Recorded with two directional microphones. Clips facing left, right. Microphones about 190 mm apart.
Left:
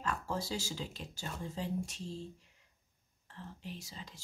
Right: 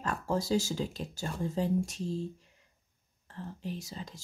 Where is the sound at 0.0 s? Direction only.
45° right (ahead or behind).